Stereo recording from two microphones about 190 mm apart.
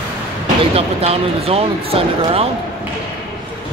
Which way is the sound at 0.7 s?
30° right (ahead or behind).